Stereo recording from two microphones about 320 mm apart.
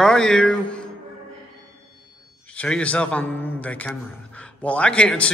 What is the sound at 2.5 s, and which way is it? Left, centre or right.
A man's voice, centre.